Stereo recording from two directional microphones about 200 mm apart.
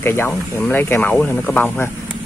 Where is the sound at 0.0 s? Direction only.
10° left (ahead or behind).